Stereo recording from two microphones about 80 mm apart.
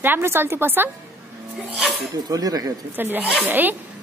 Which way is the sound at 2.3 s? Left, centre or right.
Right.